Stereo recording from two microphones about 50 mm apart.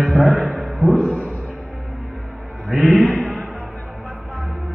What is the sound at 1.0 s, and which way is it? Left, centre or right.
Music, centre.